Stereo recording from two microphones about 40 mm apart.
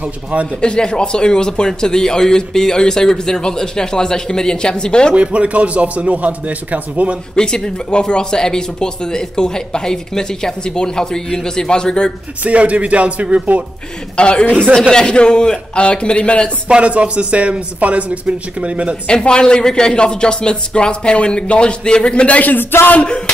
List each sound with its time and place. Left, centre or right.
0.0 s a man's voice: right
0.6 s speech: left
5.1 s a man's voice: right
7.3 s speech: centre
12.4 s a man's voice: right
14.1 s speech: left
14.7 s speech: centre; by 16.4 s left
16.6 s a man's voice: right
19.0 s speech: left
22.6 s speech: left
23.0 s speech: left